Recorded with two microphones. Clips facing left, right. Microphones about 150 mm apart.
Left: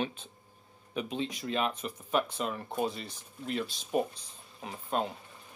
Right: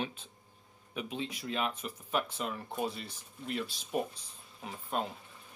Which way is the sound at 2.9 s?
5° right (ahead or behind).